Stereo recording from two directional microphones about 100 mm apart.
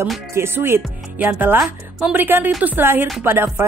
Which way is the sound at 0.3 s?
25° right (ahead or behind).